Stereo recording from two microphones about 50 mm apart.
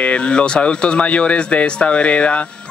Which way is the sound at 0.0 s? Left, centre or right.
Left.